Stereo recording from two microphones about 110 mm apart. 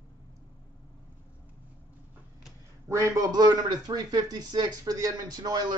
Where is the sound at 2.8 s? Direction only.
25° right (ahead or behind).